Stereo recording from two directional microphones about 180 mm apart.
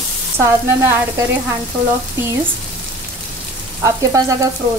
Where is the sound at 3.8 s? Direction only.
20° right (ahead or behind).